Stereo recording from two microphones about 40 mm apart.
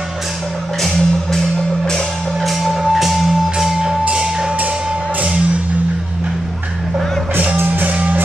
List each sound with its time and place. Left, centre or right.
0.8 s music: centre
2.4 s music: centre; by 4.5 s right
7.6 s music: right